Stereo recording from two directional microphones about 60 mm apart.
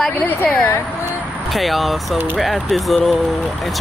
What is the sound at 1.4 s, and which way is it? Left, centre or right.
Speech, centre.